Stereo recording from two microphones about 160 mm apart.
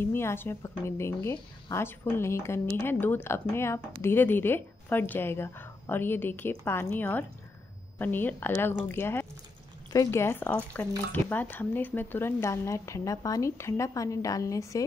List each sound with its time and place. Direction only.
0.0 s a woman's voice: 15° left (ahead or behind)